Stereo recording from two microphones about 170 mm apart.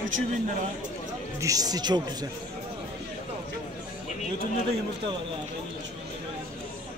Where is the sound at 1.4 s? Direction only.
20° right (ahead or behind).